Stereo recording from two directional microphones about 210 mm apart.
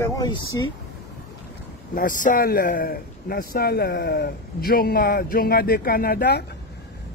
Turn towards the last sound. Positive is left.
turn(degrees=50)  # may be behind; listen again after turning